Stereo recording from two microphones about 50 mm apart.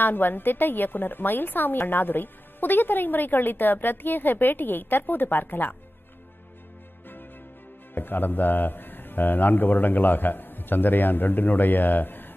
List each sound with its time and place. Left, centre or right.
0.0 s a woman's voice: left
7.9 s a woman's voice: left